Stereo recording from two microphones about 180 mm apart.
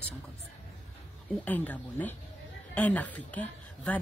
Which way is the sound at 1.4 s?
10° left (ahead or behind).